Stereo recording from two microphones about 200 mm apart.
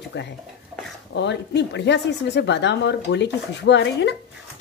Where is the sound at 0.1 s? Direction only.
60° left (ahead or behind).